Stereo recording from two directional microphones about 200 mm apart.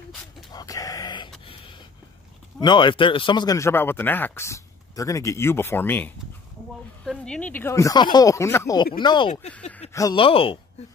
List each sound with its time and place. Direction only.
0.5 s a sound: 20° left (ahead or behind)
2.6 s speech: 25° left (ahead or behind)
9.5 s speech: 5° left (ahead or behind)
9.9 s speech: 20° left (ahead or behind)